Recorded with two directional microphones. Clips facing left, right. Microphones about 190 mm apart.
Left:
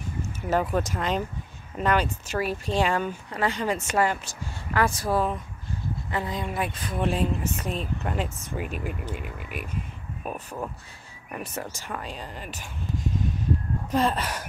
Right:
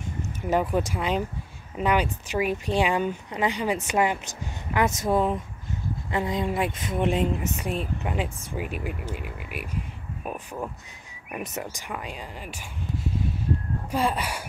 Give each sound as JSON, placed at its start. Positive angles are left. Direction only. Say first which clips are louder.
{"t": 0.2, "sound": "a sound", "louder": "right 1 dB", "side_deg": -15}
{"t": 0.7, "sound": "speech", "louder": "right 1 dB", "side_deg": -10}
{"t": 11.3, "sound": "speech", "louder": "right 1 dB", "side_deg": -20}